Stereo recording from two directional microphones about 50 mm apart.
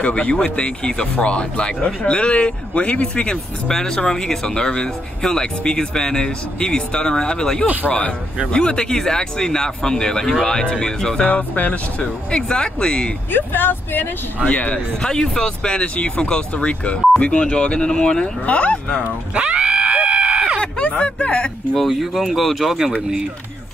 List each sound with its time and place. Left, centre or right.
0.0 s speech: left
7.6 s speech: right
8.5 s speech: centre
11.2 s speech: left
13.3 s speech: left
14.4 s speech: left
15.0 s speech: centre
18.4 s speech: left
19.3 s screaming: right
20.6 s a sound: left
21.7 s speech: centre